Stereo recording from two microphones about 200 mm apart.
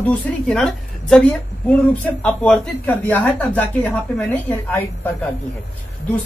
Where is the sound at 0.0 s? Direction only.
5° left (ahead or behind).